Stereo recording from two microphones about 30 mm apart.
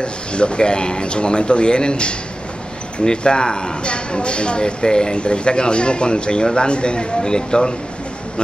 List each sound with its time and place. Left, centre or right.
0.0 s speech: left